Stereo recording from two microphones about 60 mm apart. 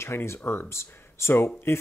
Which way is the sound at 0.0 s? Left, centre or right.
Left.